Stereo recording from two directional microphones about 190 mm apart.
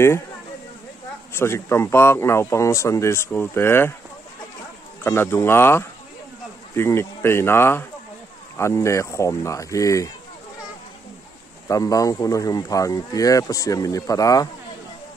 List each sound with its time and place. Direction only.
1.3 s speech: 15° left (ahead or behind)
5.0 s speech: 10° left (ahead or behind)
11.6 s speech: 15° left (ahead or behind)